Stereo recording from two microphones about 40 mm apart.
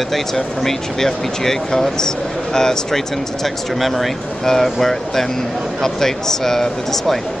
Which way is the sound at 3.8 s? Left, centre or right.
Centre.